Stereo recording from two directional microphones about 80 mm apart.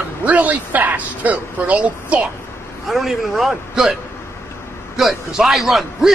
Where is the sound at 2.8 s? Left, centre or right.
Centre.